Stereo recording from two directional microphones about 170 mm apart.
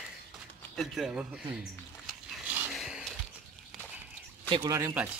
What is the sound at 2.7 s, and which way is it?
Music, centre (ahead or behind).